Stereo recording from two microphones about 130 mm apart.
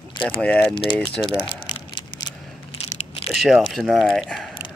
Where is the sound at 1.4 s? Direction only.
40° left (ahead or behind).